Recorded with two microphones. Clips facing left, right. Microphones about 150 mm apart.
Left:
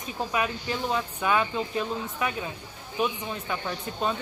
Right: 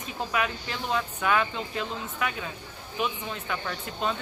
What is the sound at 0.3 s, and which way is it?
Speech, 20° left (ahead or behind).